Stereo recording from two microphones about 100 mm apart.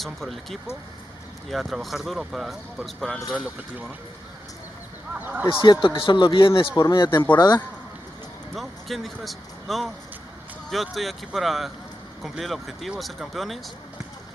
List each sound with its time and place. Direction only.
0.0 s speech: centre (ahead or behind)
5.1 s speech: 20° right (ahead or behind)
5.5 s speech: 55° left (ahead or behind)
6.8 s speech: 45° left (ahead or behind)
8.5 s speech: centre (ahead or behind)